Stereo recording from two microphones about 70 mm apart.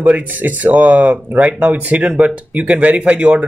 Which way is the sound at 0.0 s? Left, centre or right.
Right.